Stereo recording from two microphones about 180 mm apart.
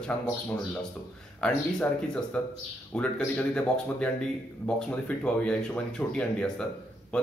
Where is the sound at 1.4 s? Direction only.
5° left (ahead or behind).